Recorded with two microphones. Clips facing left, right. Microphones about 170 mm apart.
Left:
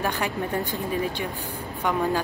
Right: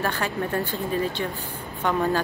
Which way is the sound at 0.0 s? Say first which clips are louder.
Even; 15° left (ahead or behind).